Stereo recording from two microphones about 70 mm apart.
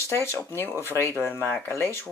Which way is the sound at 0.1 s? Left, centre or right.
Left.